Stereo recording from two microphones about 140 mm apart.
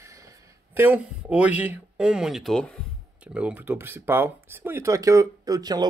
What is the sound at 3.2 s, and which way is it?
Speech, 10° right (ahead or behind).